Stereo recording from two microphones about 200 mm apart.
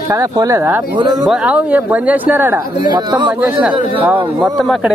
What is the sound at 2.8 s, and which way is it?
Speech, 20° right (ahead or behind).